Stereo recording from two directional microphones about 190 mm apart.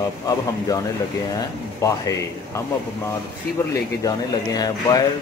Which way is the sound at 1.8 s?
15° left (ahead or behind).